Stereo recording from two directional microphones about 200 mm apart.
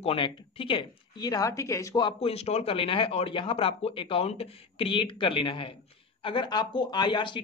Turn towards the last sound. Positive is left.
turn(degrees=25)  # may be behind; listen again after turning